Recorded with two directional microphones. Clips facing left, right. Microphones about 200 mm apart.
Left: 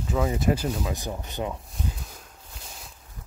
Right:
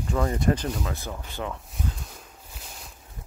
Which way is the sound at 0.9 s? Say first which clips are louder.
Left 3 dB; 15° left (ahead or behind).